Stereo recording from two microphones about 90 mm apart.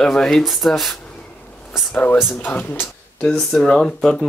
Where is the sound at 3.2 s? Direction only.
5° left (ahead or behind).